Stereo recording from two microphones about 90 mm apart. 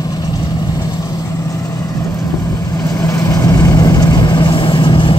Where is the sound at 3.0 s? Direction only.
35° left (ahead or behind); by 5.1 s 65° left (ahead or behind).